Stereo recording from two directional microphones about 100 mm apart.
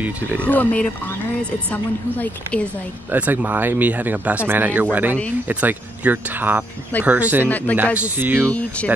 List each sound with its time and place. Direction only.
0.5 s a woman's voice: 15° left (ahead or behind)
3.1 s speech: 15° right (ahead or behind)
7.4 s a woman's voice: 15° left (ahead or behind)
7.7 s speech: 20° right (ahead or behind)
8.5 s a woman's voice: 15° left (ahead or behind)